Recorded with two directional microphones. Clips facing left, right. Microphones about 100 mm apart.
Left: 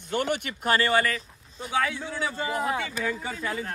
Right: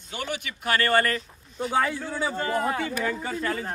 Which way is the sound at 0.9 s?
Centre (ahead or behind).